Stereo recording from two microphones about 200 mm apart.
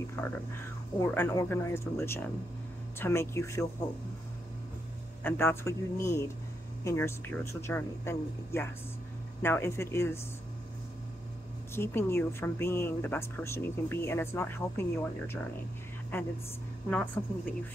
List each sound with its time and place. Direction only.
0.2 s a woman's voice: 15° left (ahead or behind)
5.2 s a woman's voice: 10° left (ahead or behind)
11.7 s a woman's voice: 10° left (ahead or behind)